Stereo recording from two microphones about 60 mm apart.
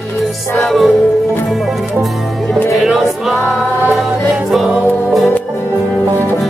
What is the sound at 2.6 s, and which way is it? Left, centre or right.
Music, centre.